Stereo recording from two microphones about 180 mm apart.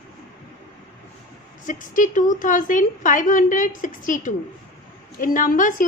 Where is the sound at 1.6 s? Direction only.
45° left (ahead or behind).